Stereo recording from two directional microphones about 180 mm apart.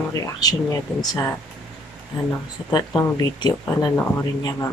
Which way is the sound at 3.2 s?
20° left (ahead or behind).